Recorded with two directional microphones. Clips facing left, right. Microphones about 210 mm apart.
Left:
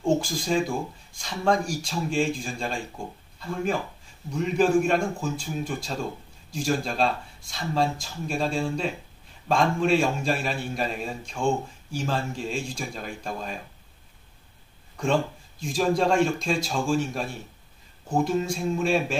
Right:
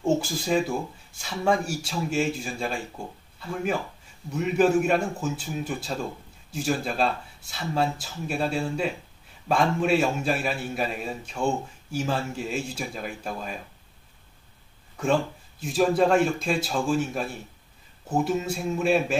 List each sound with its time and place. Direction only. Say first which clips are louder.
0.0 s speech: even; 5° right (ahead or behind)
4.3 s a man's voice: even; 5° right (ahead or behind)
15.6 s a man's voice: right 2 dB; 5° right (ahead or behind)